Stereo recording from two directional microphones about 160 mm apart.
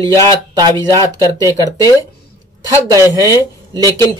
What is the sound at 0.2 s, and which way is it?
Speech, 25° right (ahead or behind).